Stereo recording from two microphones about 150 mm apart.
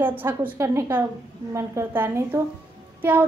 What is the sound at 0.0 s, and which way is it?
A woman's voice, 15° right (ahead or behind).